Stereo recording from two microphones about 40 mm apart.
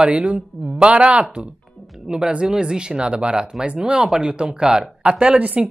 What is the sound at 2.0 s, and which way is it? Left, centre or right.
Speech, centre.